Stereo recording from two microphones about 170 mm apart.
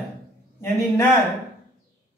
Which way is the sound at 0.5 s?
15° left (ahead or behind).